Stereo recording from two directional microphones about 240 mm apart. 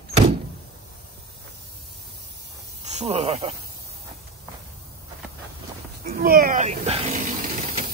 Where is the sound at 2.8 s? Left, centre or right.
Right.